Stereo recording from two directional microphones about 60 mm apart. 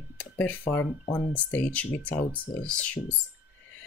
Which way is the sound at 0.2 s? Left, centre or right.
Left.